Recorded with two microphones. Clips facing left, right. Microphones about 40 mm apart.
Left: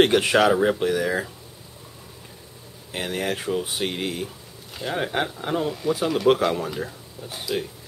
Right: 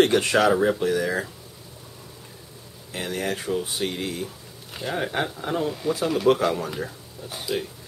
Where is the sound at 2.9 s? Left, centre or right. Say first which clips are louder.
Left 1 dB; left.